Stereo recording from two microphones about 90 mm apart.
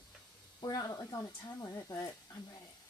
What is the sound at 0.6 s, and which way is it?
Speech, 45° left (ahead or behind).